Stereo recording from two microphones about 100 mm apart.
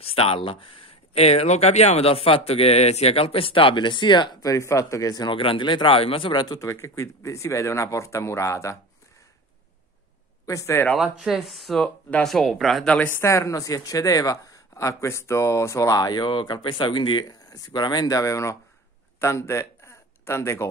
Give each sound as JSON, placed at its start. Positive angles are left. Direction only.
{"t": 0.0, "sound": "speech", "side_deg": 75}
{"t": 1.1, "sound": "speech", "side_deg": 90}
{"t": 4.4, "sound": "speech", "side_deg": 35}
{"t": 5.3, "sound": "a man's voice", "side_deg": 60}
{"t": 6.4, "sound": "speech", "side_deg": 35}
{"t": 10.4, "sound": "speech", "side_deg": 30}
{"t": 10.9, "sound": "speech", "side_deg": 0}
{"t": 12.8, "sound": "speech", "side_deg": 10}
{"t": 13.1, "sound": "speech", "side_deg": 30}
{"t": 19.1, "sound": "a sound", "side_deg": 25}